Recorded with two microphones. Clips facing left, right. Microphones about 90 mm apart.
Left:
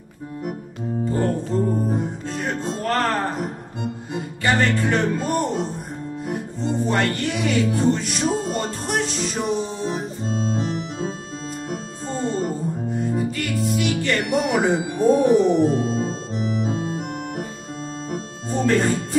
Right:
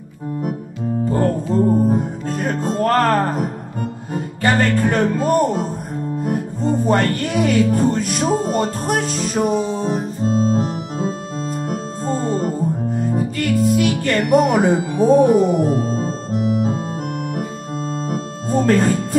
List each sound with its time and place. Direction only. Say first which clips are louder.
1.2 s music: right 5 dB; 40° right (ahead or behind)
10.2 s organ: right 8 dB; 45° right (ahead or behind)
12.1 s music: right 4 dB; 45° right (ahead or behind)
18.1 s music: right 5 dB; 45° right (ahead or behind)